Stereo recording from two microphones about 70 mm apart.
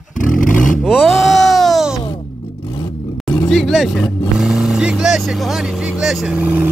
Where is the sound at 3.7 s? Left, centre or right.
Centre.